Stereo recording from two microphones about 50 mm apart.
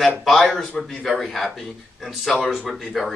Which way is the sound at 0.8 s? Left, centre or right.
Centre.